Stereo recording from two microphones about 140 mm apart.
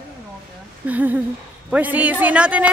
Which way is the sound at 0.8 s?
10° right (ahead or behind).